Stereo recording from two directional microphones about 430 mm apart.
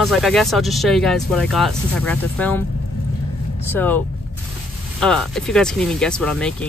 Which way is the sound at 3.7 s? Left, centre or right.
Centre.